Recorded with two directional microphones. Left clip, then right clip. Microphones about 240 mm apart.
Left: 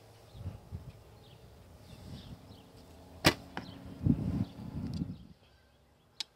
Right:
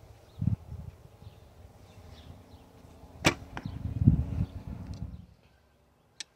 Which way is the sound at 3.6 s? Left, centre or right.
Centre.